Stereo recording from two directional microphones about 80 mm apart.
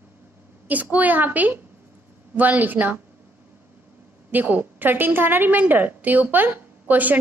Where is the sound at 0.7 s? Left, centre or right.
Centre.